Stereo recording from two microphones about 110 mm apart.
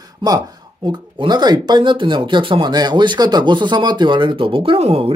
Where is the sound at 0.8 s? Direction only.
40° right (ahead or behind).